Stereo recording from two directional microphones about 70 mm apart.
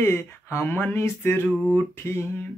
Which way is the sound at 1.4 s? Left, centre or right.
Centre.